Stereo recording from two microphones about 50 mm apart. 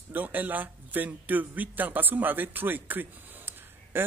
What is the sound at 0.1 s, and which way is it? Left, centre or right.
A man's voice, right.